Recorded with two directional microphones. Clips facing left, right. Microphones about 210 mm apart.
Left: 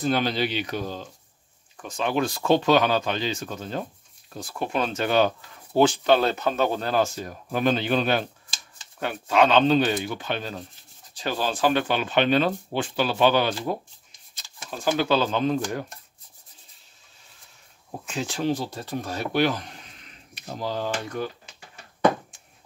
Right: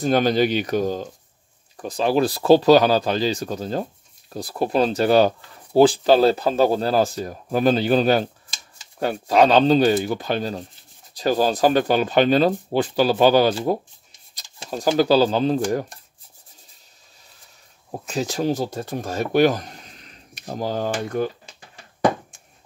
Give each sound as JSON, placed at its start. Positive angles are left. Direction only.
{"t": 0.0, "sound": "speech", "side_deg": -45}
{"t": 18.0, "sound": "speech", "side_deg": -40}